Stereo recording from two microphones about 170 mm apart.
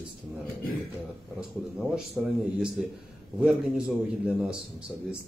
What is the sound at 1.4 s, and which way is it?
Speech, 5° right (ahead or behind).